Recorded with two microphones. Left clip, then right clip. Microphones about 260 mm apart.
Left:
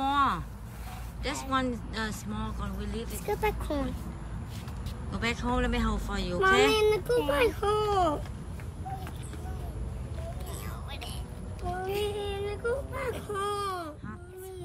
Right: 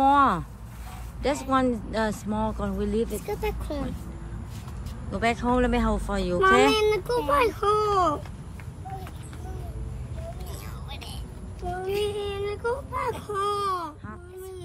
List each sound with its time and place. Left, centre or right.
0.0 s a sound: centre
1.2 s speech: centre
3.3 s speech: centre
5.1 s speech: centre
6.7 s a child's voice: right
12.0 s child singing: right